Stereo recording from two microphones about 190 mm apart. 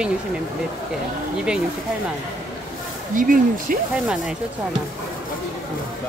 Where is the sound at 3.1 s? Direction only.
45° right (ahead or behind).